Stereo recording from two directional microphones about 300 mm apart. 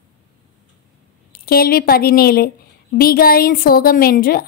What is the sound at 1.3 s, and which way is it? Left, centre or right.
A woman's voice, left.